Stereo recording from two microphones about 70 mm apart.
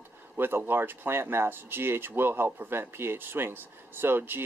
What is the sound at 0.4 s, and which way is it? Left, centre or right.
Speech, right.